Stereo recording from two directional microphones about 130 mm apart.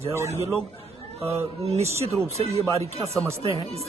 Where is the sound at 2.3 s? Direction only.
50° right (ahead or behind).